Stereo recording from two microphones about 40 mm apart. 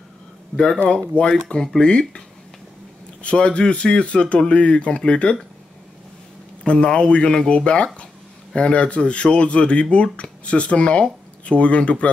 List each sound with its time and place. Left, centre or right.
1.3 s speech: centre
6.6 s speech: left